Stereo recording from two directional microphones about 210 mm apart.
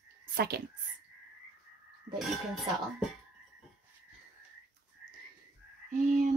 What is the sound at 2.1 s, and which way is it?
Speech, centre (ahead or behind).